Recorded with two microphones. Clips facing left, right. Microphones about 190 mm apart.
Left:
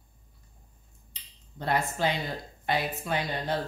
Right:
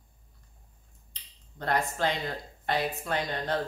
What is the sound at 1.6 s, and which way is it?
Speech, 5° left (ahead or behind).